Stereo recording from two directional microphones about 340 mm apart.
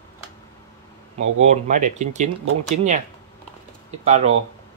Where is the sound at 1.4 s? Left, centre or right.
Right.